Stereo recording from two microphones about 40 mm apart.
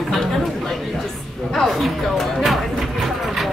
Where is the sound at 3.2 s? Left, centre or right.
Centre.